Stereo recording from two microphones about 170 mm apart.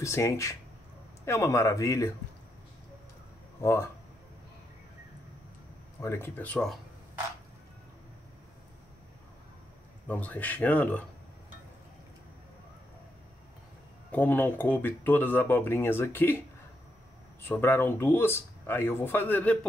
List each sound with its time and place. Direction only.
0.0 s speech: 15° left (ahead or behind)
3.6 s speech: 15° left (ahead or behind)
5.9 s speech: 15° left (ahead or behind)
10.0 s speech: 10° left (ahead or behind)
14.1 s speech: 10° left (ahead or behind)